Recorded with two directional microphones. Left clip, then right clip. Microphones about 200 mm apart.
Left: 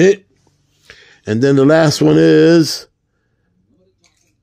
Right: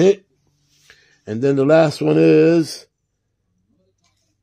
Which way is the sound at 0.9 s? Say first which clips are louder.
Left 8 dB; 15° left (ahead or behind).